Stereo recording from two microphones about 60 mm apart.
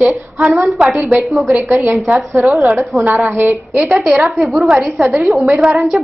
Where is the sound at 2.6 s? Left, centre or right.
Right.